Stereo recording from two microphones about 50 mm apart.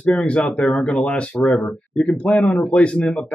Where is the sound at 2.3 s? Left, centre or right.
Centre.